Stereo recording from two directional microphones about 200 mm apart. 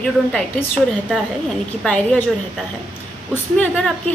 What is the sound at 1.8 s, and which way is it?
Speech, 5° left (ahead or behind).